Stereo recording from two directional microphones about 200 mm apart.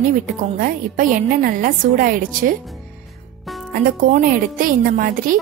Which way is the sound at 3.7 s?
45° right (ahead or behind).